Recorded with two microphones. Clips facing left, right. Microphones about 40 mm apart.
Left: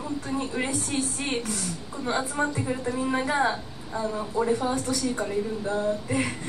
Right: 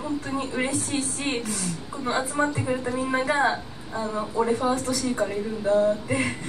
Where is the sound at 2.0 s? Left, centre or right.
Centre.